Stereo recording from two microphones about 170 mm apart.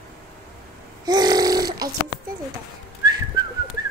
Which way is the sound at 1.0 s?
25° right (ahead or behind).